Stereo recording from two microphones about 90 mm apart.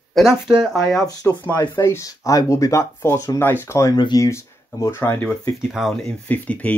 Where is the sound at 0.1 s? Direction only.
5° right (ahead or behind).